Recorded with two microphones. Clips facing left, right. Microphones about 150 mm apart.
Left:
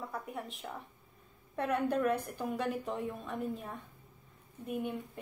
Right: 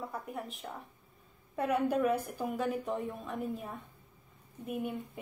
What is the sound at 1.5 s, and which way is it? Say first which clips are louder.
Speech: right 2 dB; centre (ahead or behind).